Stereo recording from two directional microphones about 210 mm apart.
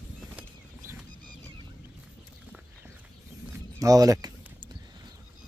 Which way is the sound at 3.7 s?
15° right (ahead or behind).